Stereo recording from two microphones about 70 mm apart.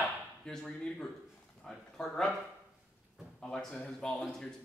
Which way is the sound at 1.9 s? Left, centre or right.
Centre.